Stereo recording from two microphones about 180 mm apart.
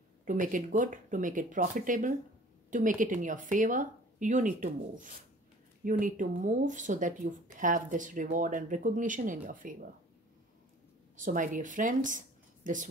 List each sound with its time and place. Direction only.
0.2 s speech: 45° right (ahead or behind)
11.1 s speech: 45° right (ahead or behind)